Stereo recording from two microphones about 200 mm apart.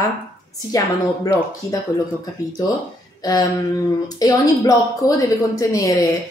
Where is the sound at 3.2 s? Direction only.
20° left (ahead or behind).